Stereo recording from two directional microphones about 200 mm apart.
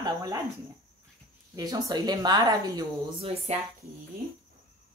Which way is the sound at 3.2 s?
30° right (ahead or behind).